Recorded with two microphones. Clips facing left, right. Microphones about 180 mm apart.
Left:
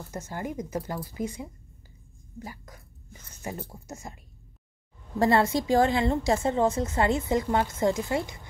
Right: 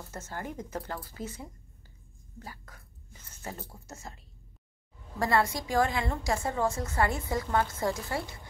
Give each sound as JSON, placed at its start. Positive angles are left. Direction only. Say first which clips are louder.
{"t": 0.1, "sound": "speech", "louder": "left 5 dB", "side_deg": 15}
{"t": 5.2, "sound": "a woman's voice", "louder": "left 5 dB", "side_deg": 25}